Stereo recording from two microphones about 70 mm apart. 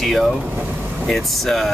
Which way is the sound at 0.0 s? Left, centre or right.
Centre.